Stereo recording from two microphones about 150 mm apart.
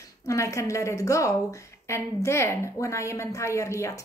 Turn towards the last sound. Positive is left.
turn(degrees=20)  # may be behind; listen again after turning